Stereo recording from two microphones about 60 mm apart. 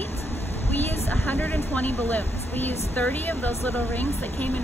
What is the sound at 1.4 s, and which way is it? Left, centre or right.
Speech, left.